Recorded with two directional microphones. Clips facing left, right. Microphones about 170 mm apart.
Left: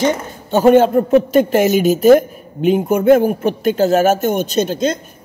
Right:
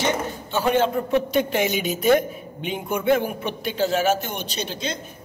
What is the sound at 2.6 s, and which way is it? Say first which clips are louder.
A man's voice: left 12 dB; 45° left (ahead or behind).